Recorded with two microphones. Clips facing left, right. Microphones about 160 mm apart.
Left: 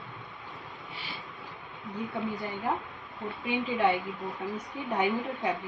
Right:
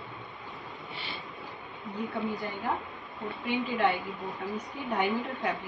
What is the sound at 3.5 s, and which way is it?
Speech, 20° left (ahead or behind).